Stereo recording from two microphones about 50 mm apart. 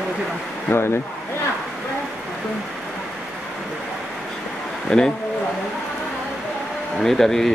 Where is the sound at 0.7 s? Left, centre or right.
Left.